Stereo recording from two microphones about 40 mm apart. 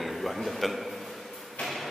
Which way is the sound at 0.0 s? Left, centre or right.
Centre.